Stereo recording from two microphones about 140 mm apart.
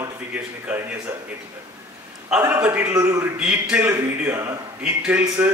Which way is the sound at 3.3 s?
10° right (ahead or behind).